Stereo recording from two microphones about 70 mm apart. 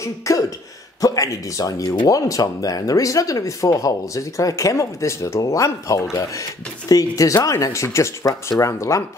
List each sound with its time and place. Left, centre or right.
0.0 s speech: left